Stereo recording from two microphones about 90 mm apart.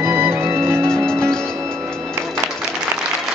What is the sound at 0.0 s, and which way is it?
Music, 25° right (ahead or behind).